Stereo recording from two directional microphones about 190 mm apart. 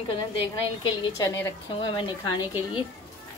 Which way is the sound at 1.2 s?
15° left (ahead or behind).